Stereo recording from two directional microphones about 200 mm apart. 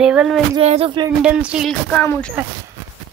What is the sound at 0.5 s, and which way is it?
Music, 30° right (ahead or behind).